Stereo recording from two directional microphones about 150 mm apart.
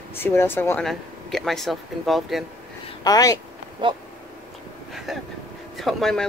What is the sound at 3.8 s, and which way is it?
Speech, 35° right (ahead or behind).